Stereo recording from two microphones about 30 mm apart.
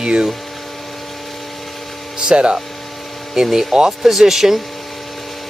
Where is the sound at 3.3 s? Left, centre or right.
Centre.